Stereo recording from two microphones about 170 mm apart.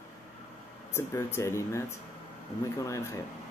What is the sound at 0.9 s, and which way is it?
Speech, 15° left (ahead or behind).